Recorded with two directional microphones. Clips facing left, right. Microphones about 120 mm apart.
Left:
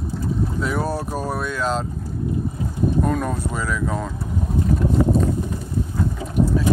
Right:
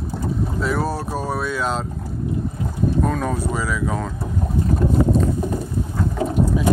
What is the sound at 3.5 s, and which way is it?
Speech, 5° right (ahead or behind).